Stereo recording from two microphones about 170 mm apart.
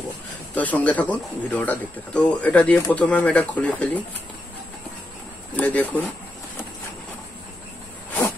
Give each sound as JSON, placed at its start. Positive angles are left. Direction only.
{"t": 0.6, "sound": "speech", "side_deg": 10}
{"t": 5.5, "sound": "speech", "side_deg": 10}